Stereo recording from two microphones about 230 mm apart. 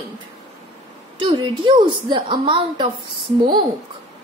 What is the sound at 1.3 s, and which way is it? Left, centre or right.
A woman's voice, centre.